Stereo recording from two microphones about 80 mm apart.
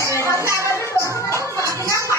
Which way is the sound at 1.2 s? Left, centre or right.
Left.